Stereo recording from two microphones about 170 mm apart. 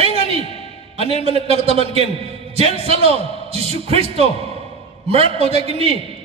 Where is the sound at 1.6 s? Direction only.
35° right (ahead or behind).